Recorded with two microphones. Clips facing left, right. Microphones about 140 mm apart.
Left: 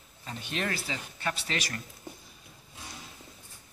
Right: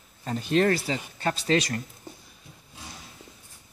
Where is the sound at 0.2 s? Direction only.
40° right (ahead or behind).